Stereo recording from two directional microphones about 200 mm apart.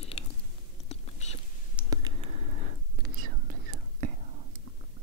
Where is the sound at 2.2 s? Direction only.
35° right (ahead or behind).